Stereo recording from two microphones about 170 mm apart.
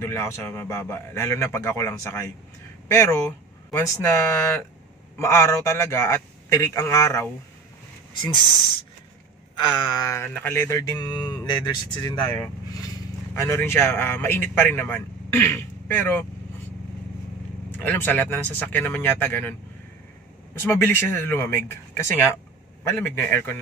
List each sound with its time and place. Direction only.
0.0 s speech: 15° left (ahead or behind)
9.6 s speech: 25° left (ahead or behind)
13.3 s speech: 15° left (ahead or behind)
17.8 s speech: 10° left (ahead or behind)
20.5 s speech: 15° left (ahead or behind)